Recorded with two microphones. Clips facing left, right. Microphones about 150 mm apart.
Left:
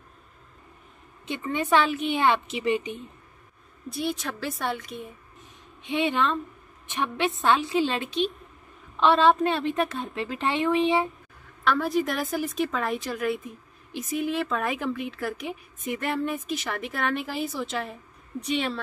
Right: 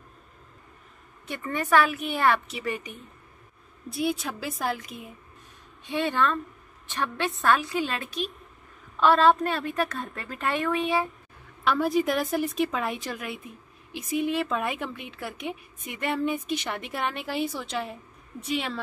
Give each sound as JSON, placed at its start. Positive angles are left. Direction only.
{"t": 1.2, "sound": "a woman's voice", "side_deg": 20}
{"t": 3.9, "sound": "a woman's voice", "side_deg": 0}
{"t": 5.9, "sound": "a woman's voice", "side_deg": 20}
{"t": 8.9, "sound": "a woman's voice", "side_deg": 0}
{"t": 9.7, "sound": "a woman's voice", "side_deg": 25}
{"t": 11.6, "sound": "a woman's voice", "side_deg": 0}